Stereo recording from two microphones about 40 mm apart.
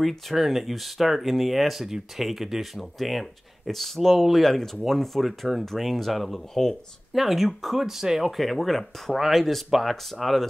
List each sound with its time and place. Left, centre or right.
0.3 s speech: centre
7.1 s speech: centre